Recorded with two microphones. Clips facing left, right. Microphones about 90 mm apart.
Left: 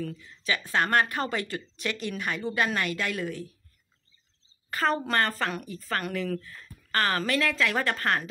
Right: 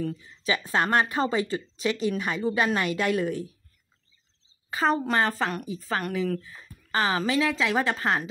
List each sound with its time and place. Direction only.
0.2 s speech: 30° right (ahead or behind)
1.8 s speech: 10° right (ahead or behind)
4.6 s a woman's voice: 15° right (ahead or behind)